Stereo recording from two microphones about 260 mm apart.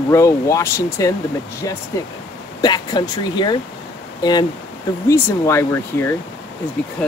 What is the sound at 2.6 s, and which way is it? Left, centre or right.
Speech, centre.